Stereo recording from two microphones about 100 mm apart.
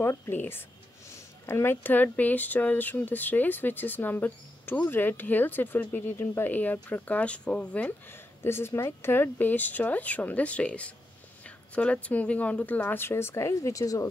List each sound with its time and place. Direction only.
0.0 s speech: 25° left (ahead or behind)